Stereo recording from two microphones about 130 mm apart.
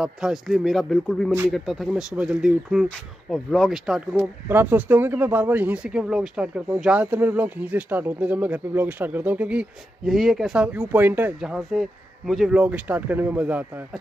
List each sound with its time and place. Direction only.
0.0 s speech: 5° right (ahead or behind)
4.5 s speech: 15° right (ahead or behind)